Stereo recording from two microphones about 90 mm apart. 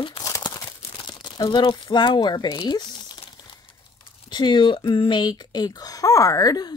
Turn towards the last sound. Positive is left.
turn(degrees=45)  # may be behind; listen again after turning